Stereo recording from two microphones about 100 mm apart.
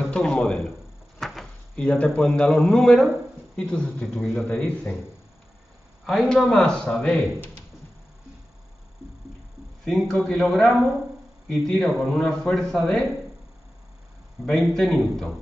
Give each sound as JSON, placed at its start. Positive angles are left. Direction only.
{"t": 0.1, "sound": "speech", "side_deg": 5}
{"t": 1.2, "sound": "a sound", "side_deg": 0}
{"t": 2.0, "sound": "speech", "side_deg": 5}
{"t": 6.0, "sound": "speech", "side_deg": 5}
{"t": 9.8, "sound": "speech", "side_deg": 5}
{"t": 14.4, "sound": "speech", "side_deg": 5}